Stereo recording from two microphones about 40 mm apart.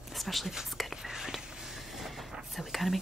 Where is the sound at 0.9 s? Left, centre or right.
Centre.